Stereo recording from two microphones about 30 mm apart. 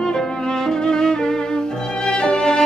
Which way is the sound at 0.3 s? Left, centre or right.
Left.